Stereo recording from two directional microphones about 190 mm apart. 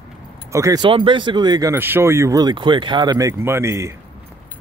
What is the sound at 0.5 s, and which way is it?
Speech, 20° right (ahead or behind).